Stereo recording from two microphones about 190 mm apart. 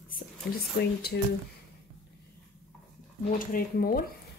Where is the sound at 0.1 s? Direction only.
55° left (ahead or behind).